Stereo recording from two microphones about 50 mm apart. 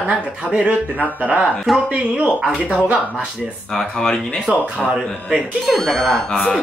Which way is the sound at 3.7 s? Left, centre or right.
Centre.